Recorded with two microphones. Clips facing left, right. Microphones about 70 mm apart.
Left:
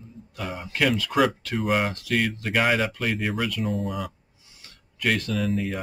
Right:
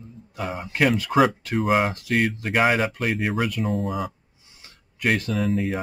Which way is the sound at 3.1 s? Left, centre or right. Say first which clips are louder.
Right 2 dB; centre.